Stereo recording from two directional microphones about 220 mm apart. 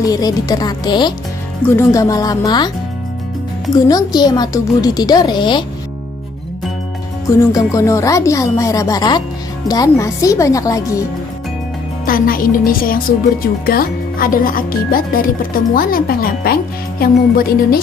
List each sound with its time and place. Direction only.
0.0 s speech: 15° left (ahead or behind)
3.7 s a woman's voice: 20° left (ahead or behind)
7.2 s speech: 15° left (ahead or behind)
12.1 s speech: 40° left (ahead or behind)